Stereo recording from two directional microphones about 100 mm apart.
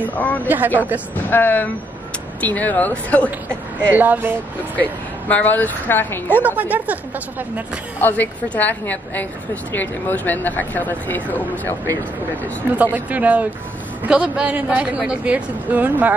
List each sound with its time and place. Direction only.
0.1 s a woman's voice: 15° left (ahead or behind)
0.5 s a woman's voice: 20° right (ahead or behind)
1.3 s a woman's voice: 20° left (ahead or behind)
3.9 s speech: 15° right (ahead or behind)
4.7 s speech: 15° left (ahead or behind)
6.4 s speech: 15° right (ahead or behind)
8.0 s a woman's voice: 20° left (ahead or behind)
12.7 s speech: 15° right (ahead or behind)